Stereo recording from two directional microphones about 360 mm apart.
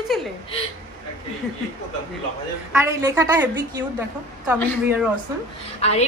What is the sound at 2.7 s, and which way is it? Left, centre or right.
A woman's voice, centre.